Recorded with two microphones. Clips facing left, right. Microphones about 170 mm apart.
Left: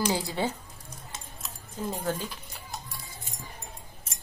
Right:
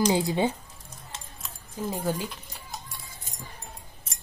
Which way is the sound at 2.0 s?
10° right (ahead or behind).